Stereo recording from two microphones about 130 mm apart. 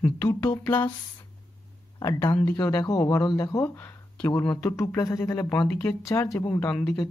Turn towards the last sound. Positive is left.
turn(degrees=10)  # may be behind; listen again after turning